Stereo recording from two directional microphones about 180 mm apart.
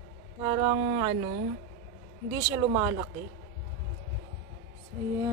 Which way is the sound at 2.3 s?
20° right (ahead or behind).